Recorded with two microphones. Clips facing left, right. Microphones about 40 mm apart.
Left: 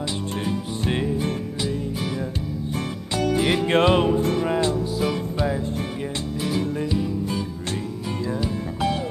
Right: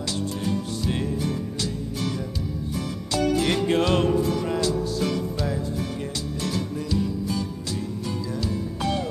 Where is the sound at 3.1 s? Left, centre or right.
Left.